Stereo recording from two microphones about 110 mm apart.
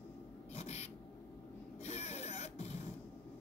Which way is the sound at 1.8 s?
80° left.